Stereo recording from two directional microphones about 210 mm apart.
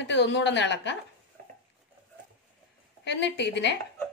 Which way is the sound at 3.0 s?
55° left (ahead or behind).